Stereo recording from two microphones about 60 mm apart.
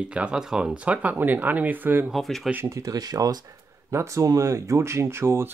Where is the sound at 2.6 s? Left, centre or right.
Right.